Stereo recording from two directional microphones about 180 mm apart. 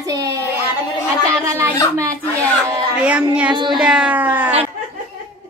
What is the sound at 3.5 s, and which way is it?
Child singing, 25° right (ahead or behind).